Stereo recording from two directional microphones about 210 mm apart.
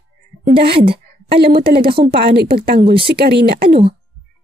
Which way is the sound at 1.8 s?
25° right (ahead or behind).